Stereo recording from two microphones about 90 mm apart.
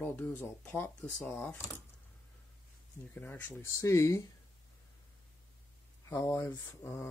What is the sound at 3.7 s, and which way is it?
Speech, 35° left (ahead or behind).